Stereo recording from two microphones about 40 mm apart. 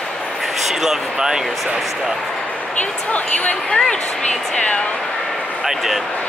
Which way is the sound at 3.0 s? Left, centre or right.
Left.